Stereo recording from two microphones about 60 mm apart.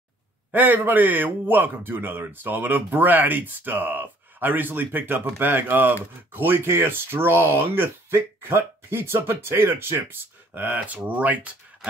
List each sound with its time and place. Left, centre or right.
0.5 s speech: right